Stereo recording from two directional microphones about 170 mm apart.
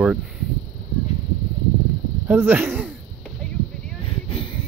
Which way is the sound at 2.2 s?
10° right (ahead or behind).